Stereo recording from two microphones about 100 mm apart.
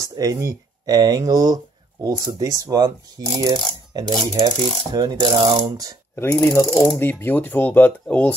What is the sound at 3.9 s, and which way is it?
Mechanisms, 45° right (ahead or behind).